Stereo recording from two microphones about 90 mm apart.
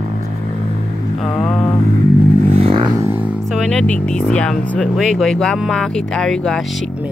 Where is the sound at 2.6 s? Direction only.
90° right.